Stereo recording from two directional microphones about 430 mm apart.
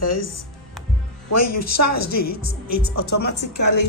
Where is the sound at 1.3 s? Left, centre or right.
Left.